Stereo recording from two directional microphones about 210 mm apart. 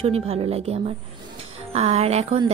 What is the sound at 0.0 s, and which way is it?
A woman's voice, 25° right (ahead or behind).